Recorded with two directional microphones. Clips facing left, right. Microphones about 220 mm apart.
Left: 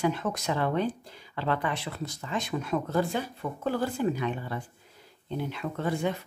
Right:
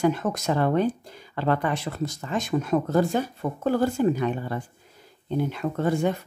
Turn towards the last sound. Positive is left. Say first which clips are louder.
# right 5 dB
turn(degrees=-45)  # may be behind; listen again after turning